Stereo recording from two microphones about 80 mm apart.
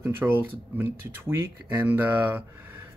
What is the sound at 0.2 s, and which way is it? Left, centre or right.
Speech, right.